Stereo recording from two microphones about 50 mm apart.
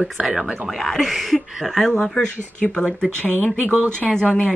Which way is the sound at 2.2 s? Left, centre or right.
Centre.